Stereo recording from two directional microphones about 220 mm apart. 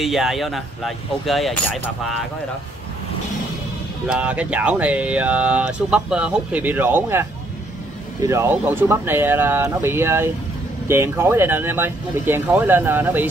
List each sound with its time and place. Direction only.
0.0 s speech: centre (ahead or behind)
4.1 s speech: 5° right (ahead or behind)